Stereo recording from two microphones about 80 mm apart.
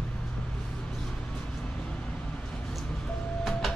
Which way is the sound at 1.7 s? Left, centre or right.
Centre.